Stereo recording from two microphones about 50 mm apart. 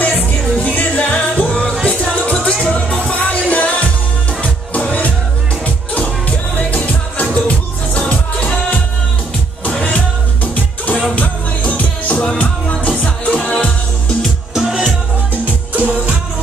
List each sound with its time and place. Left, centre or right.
0.0 s music: left
10.4 s music: left
14.5 s music: centre
15.4 s music: right